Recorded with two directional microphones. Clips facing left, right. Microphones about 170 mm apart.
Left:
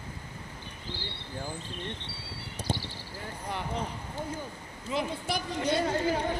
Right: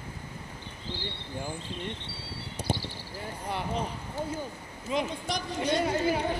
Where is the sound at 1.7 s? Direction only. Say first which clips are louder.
Right 2 dB; 15° right (ahead or behind).